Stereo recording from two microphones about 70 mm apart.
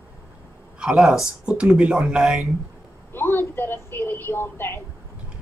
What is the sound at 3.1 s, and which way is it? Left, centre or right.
A woman's voice, left.